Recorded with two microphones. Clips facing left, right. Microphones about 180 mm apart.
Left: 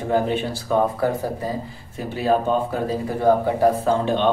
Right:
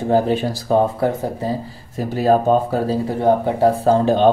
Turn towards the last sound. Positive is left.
turn(degrees=-40)  # may be behind; listen again after turning